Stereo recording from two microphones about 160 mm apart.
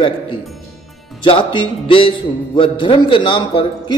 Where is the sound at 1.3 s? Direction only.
30° left (ahead or behind).